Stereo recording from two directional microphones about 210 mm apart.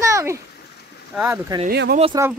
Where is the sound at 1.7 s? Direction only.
50° right (ahead or behind).